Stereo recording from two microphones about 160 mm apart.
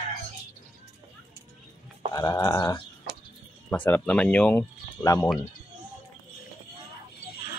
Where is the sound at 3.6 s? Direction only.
10° left (ahead or behind).